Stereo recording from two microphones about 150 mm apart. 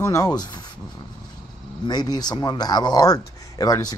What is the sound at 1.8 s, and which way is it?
Speech, 25° left (ahead or behind).